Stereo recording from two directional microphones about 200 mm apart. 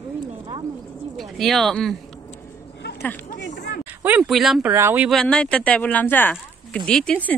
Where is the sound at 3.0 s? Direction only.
10° left (ahead or behind).